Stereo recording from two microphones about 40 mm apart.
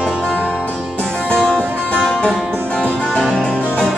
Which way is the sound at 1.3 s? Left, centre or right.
Left.